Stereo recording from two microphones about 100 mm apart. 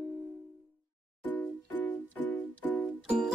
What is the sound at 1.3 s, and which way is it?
Music, 20° left (ahead or behind).